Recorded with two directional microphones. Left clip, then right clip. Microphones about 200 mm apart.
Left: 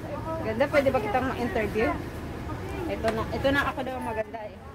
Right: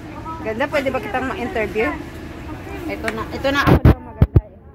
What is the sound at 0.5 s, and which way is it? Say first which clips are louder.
A woman's voice: right 2 dB; 30° right (ahead or behind).